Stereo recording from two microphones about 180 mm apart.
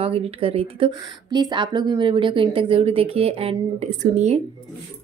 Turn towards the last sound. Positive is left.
turn(degrees=-40)  # may be behind; listen again after turning